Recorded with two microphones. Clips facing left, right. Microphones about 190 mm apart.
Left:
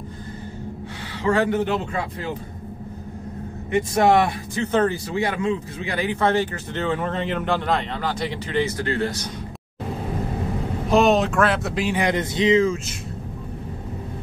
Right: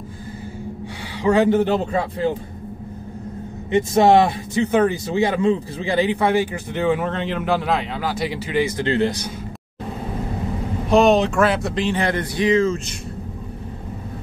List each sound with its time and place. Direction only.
1.2 s a man's voice: 20° right (ahead or behind)
1.7 s a man's voice: 30° right (ahead or behind)
3.7 s a man's voice: 25° right (ahead or behind)
4.6 s a man's voice: 15° right (ahead or behind)
6.1 s speech: 10° right (ahead or behind)
7.1 s speech: centre (ahead or behind)
8.7 s a man's voice: 25° right (ahead or behind)
10.9 s speech: centre (ahead or behind); by 12.7 s 20° left (ahead or behind)